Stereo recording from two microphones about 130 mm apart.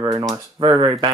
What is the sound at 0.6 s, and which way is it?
Speech, 40° right (ahead or behind).